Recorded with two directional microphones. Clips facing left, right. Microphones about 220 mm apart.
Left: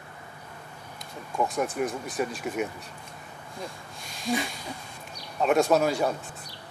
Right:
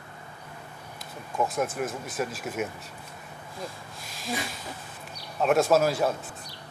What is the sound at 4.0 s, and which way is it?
Speech, centre (ahead or behind).